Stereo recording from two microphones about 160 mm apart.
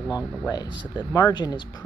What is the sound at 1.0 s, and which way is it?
Speech, 25° left (ahead or behind).